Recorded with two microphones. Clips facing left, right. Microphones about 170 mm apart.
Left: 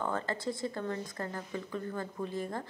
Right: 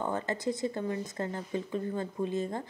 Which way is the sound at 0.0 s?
20° right (ahead or behind).